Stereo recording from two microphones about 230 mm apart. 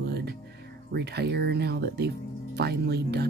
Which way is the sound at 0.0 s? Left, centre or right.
Right.